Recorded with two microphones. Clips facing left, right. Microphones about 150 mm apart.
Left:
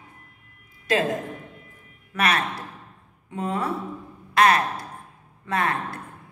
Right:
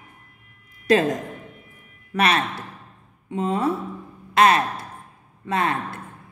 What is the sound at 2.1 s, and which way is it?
Speech, 30° right (ahead or behind).